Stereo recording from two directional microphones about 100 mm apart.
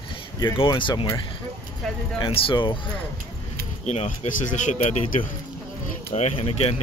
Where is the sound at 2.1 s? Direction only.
55° left (ahead or behind).